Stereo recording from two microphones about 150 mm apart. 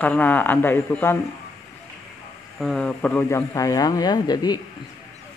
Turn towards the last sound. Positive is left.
turn(degrees=25)  # may be behind; listen again after turning